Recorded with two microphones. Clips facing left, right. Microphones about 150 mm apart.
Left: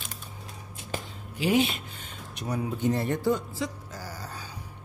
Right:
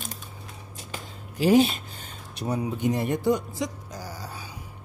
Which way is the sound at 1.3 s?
40° right (ahead or behind).